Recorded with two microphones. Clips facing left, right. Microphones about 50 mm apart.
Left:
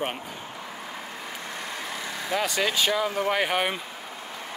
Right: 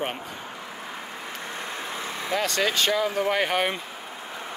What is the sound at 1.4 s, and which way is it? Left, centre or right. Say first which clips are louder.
Vehicle: right 2 dB; right.